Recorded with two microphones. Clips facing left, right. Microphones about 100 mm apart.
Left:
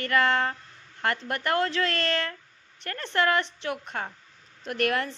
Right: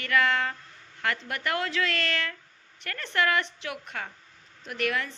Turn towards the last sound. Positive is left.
turn(degrees=50)  # may be behind; listen again after turning